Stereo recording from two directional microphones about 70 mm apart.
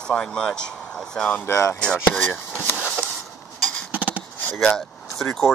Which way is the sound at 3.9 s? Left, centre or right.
Centre.